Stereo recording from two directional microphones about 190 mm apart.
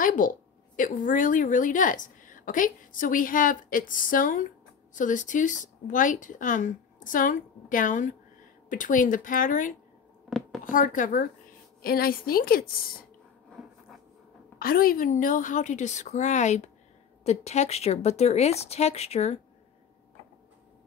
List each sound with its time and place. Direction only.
0.0 s a sound: 45° left (ahead or behind)
0.7 s a woman's voice: 45° left (ahead or behind)
13.5 s writing: centre (ahead or behind)
14.6 s a woman's voice: 50° left (ahead or behind); by 19.4 s 35° left (ahead or behind)